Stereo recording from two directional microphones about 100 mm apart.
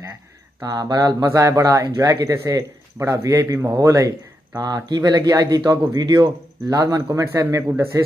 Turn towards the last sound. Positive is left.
turn(degrees=-25)  # may be behind; listen again after turning